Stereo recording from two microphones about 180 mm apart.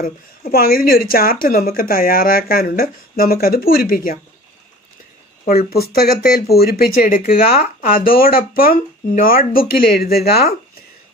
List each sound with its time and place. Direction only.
0.0 s speech: 55° left (ahead or behind)
5.4 s speech: 60° left (ahead or behind)